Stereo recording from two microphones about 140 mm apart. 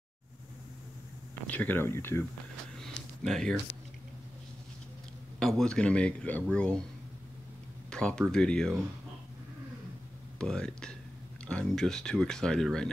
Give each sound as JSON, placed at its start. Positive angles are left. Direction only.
{"t": 1.5, "sound": "a man's voice", "side_deg": 10}
{"t": 2.8, "sound": "a sound", "side_deg": 5}
{"t": 5.4, "sound": "a man's voice", "side_deg": 5}
{"t": 7.9, "sound": "speech", "side_deg": 5}
{"t": 10.4, "sound": "speech", "side_deg": 5}